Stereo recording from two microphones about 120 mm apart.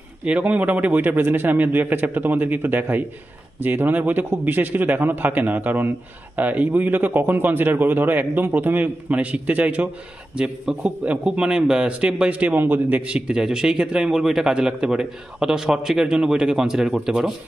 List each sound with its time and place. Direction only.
0.2 s a man's voice: 10° right (ahead or behind)